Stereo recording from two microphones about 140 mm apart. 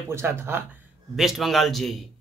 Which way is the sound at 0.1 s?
15° right (ahead or behind).